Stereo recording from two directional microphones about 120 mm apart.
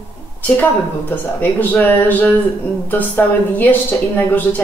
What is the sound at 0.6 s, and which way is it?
A woman's voice, 15° left (ahead or behind).